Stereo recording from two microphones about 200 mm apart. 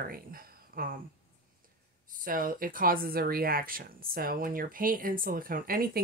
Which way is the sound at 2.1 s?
45° right (ahead or behind).